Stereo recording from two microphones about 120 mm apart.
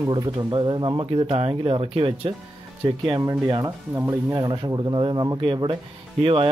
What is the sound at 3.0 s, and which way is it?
Speech, 35° right (ahead or behind).